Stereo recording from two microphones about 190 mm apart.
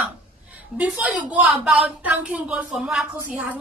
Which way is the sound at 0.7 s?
5° right (ahead or behind).